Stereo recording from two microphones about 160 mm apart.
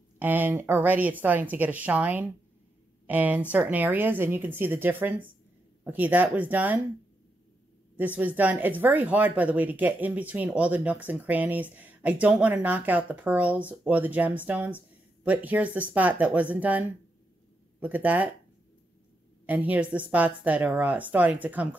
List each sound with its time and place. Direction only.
0.2 s speech: 10° right (ahead or behind)
7.9 s speech: 10° right (ahead or behind)
19.4 s speech: 10° right (ahead or behind)